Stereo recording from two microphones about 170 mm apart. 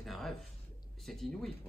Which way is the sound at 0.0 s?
Centre (ahead or behind).